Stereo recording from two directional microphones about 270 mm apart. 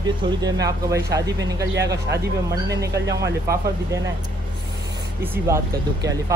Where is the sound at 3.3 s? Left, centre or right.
Centre.